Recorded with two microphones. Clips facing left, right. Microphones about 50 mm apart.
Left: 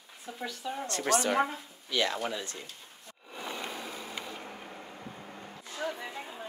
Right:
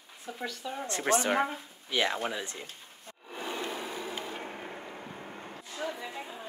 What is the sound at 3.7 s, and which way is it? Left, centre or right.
Vehicle, right.